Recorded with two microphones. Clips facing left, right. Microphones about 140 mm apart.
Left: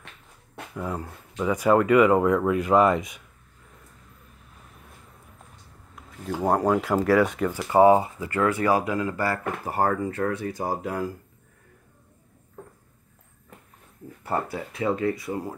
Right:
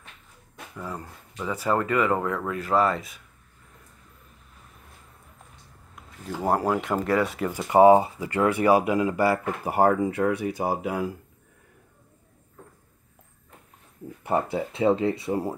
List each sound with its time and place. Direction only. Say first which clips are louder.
0.9 s speech: left 5 dB; 10° left (ahead or behind)
6.4 s speech: left 2 dB; 5° right (ahead or behind)
7.4 s speech: right 3 dB; 15° right (ahead or behind)
14.2 s speech: right 3 dB; 20° right (ahead or behind)